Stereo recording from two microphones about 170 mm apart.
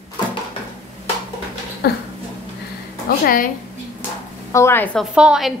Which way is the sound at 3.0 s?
60° left (ahead or behind).